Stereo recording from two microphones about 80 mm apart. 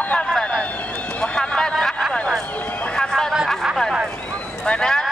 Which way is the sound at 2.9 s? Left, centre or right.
Centre.